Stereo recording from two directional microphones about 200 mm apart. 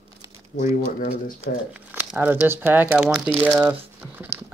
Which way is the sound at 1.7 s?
5° right (ahead or behind).